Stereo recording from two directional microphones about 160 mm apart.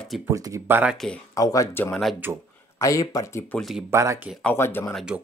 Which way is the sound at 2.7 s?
20° left (ahead or behind).